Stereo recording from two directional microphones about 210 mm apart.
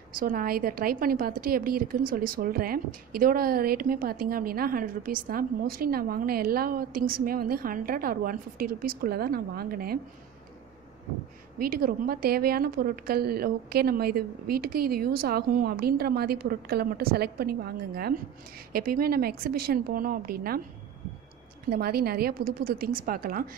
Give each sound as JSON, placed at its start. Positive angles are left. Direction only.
{"t": 0.1, "sound": "a woman's voice", "side_deg": -40}
{"t": 11.5, "sound": "a woman's voice", "side_deg": -45}
{"t": 21.6, "sound": "a woman's voice", "side_deg": -45}